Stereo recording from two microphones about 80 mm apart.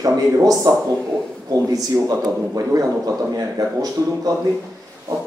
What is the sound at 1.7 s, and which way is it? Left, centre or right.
A man's voice, right.